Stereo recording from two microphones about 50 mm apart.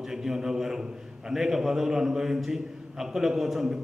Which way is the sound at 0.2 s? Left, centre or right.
Centre.